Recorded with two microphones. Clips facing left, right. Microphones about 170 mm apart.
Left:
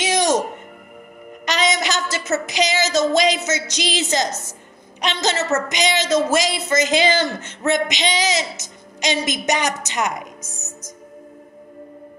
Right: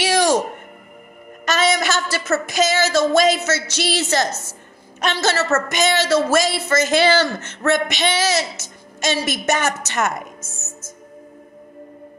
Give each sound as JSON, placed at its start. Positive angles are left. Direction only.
{"t": 0.0, "sound": "music", "side_deg": 20}
{"t": 1.4, "sound": "a sound", "side_deg": 15}
{"t": 2.6, "sound": "a woman's voice", "side_deg": 15}